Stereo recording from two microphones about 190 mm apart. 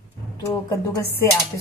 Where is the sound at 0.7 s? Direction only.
15° left (ahead or behind).